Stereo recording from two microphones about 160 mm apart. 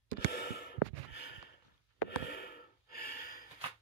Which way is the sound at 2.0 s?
90° left.